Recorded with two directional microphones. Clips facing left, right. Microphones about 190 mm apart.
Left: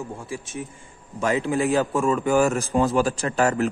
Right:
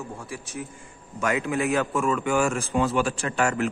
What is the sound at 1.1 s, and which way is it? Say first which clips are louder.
A man's voice: left 3 dB; 30° left (ahead or behind).